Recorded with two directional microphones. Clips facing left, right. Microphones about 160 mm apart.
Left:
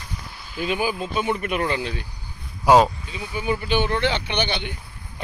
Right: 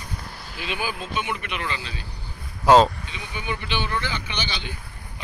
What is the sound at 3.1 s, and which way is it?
Speech, 40° left (ahead or behind).